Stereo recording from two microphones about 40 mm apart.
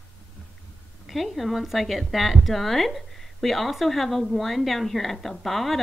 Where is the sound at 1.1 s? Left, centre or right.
Centre.